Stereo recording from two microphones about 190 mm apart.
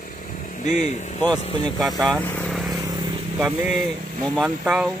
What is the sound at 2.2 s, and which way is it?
Vehicle, 10° left (ahead or behind).